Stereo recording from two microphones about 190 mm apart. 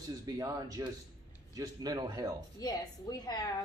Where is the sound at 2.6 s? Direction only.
20° left (ahead or behind).